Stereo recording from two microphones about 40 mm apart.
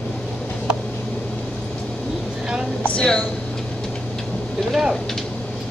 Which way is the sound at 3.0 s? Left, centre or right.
Centre.